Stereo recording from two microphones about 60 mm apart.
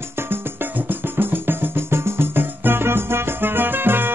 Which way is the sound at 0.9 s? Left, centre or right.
Right.